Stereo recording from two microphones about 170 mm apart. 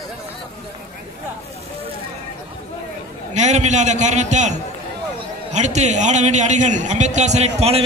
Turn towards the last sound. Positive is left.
turn(degrees=-35)  # may be behind; listen again after turning